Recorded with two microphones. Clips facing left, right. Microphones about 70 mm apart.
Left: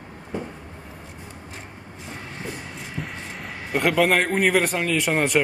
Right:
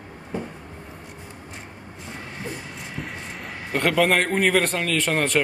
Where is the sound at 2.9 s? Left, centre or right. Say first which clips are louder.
Left 1 dB; centre.